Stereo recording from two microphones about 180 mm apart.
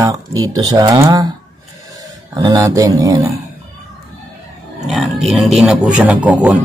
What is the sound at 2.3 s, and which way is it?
Speech, 20° right (ahead or behind).